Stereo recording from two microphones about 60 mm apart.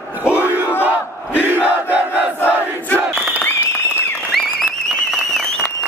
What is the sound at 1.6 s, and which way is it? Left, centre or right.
Crowd, right.